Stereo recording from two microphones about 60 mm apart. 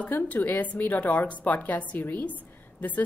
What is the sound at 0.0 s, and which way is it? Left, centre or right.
A woman's voice, left.